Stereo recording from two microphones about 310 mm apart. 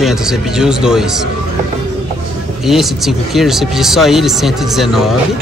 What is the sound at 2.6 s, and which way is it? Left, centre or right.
Speech, centre.